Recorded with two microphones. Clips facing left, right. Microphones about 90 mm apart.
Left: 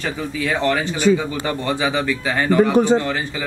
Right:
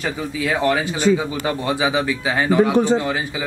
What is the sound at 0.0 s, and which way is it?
Speech, 10° right (ahead or behind).